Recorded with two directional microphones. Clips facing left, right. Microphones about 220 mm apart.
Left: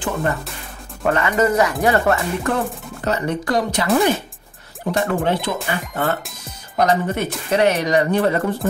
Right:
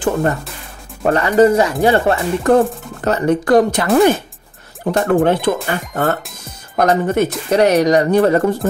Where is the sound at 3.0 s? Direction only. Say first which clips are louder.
Right 7 dB; 50° right (ahead or behind).